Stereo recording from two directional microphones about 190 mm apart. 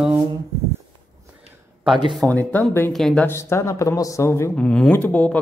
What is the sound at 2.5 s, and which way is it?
Speech, 10° left (ahead or behind).